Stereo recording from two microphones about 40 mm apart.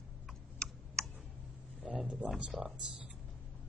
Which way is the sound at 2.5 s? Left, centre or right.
Centre.